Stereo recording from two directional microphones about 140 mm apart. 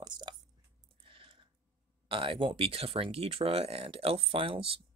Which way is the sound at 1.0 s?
40° right (ahead or behind).